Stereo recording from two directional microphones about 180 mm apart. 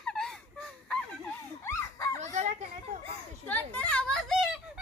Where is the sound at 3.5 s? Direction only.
10° left (ahead or behind).